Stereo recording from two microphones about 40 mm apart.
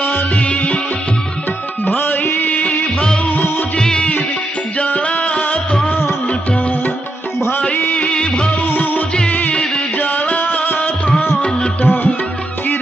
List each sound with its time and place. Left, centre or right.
0.4 s music: left
1.9 s music: left
2.4 s music: left
3.7 s music: left
4.8 s music: left
7.7 s music of bollywood: left
8.1 s music of bollywood: left
8.6 s music: left
9.9 s music: left
11.8 s music: left